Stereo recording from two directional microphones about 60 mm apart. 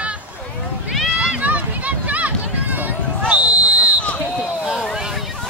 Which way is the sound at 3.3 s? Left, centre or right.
Right.